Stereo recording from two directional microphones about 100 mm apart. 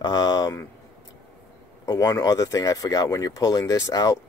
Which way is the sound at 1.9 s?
40° left (ahead or behind).